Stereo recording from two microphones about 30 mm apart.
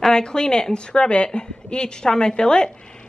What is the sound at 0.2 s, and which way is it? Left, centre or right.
A woman's voice, left.